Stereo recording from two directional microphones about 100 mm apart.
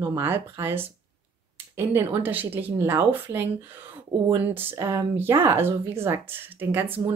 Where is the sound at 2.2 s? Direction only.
20° right (ahead or behind).